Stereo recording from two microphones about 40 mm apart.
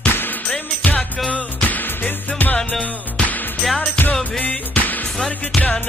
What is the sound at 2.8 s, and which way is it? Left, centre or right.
Music, left.